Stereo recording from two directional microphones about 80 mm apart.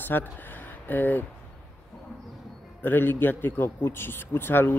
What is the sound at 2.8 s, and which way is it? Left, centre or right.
A man's voice, left.